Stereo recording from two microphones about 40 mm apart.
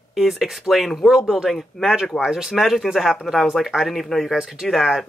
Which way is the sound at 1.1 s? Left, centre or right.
Centre.